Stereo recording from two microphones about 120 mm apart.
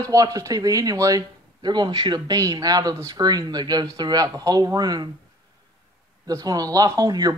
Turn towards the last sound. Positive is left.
turn(degrees=-35)  # may be behind; listen again after turning